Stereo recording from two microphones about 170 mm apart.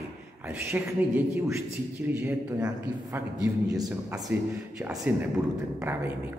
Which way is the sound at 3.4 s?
20° right (ahead or behind).